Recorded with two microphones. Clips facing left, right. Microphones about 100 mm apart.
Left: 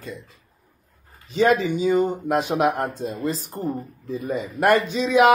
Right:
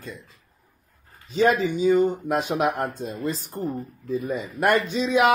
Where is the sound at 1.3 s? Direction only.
50° left (ahead or behind).